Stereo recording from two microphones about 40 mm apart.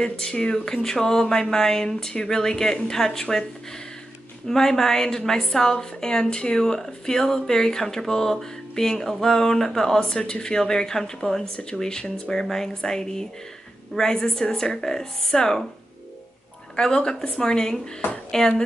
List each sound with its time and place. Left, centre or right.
0.2 s speech: centre
4.5 s speech: centre
16.7 s speech: centre